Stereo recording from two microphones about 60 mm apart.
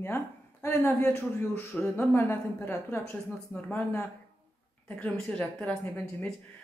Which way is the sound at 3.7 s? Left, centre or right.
Left.